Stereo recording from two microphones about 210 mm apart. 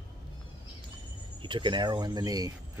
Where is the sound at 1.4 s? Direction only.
20° right (ahead or behind).